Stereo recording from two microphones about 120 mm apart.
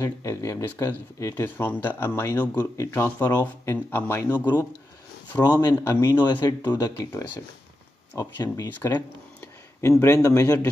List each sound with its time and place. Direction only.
0.0 s speech: 25° left (ahead or behind)
6.1 s speech: 35° left (ahead or behind)
8.7 s speech: 15° left (ahead or behind)